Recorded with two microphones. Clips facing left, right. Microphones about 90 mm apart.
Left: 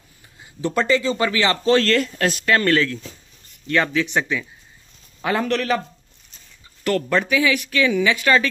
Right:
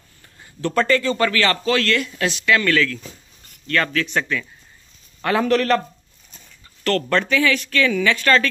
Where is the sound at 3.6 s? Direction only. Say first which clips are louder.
Left 1 dB; 15° left (ahead or behind).